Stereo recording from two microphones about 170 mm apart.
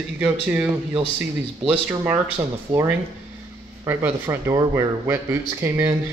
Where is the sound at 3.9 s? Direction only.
15° right (ahead or behind).